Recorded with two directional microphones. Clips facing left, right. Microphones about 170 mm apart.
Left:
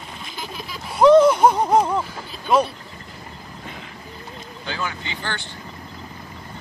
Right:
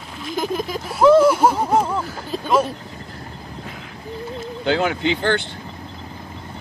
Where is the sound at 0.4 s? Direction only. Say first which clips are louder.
Right 12 dB; 45° right (ahead or behind).